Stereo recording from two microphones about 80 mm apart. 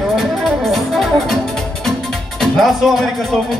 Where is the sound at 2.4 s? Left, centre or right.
Centre.